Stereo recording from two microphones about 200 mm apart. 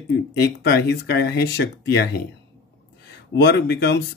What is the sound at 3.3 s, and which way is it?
Speech, 60° left (ahead or behind).